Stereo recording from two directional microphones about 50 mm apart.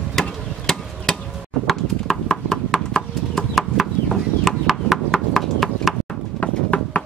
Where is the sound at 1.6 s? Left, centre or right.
Centre.